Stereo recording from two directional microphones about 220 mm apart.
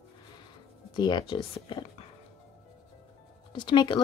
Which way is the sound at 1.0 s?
20° left (ahead or behind).